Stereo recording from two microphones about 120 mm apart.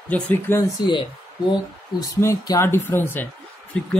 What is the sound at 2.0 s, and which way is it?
Speech, 30° left (ahead or behind).